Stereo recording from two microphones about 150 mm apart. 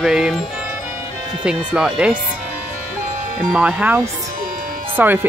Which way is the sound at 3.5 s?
5° right (ahead or behind).